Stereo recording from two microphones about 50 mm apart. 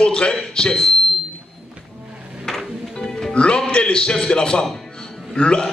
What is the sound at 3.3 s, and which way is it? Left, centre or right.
A man's voice, left.